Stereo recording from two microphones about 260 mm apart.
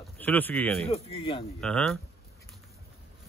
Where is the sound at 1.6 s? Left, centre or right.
Centre.